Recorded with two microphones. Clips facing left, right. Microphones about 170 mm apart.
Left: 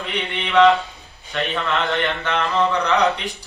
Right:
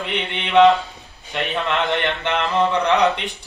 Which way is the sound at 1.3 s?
20° right (ahead or behind).